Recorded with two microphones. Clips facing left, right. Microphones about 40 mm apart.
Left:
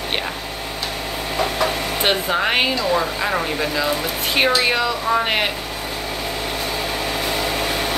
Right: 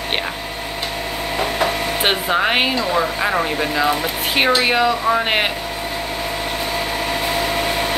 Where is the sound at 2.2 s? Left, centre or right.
Centre.